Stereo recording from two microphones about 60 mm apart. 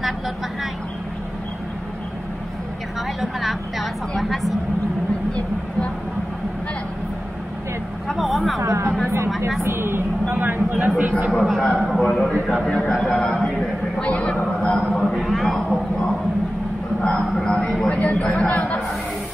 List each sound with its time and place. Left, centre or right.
3.2 s a woman's voice: centre
8.1 s a woman's voice: centre
8.5 s a woman's voice: right
9.6 s a man's voice: right
11.2 s a woman's voice: centre
12.6 s speech: centre
12.9 s a woman's voice: centre
13.6 s a sound: centre
14.9 s speech: centre
15.1 s a woman's voice: centre
17.5 s a man's voice: centre
18.2 s speech: centre
18.5 s a man's voice: left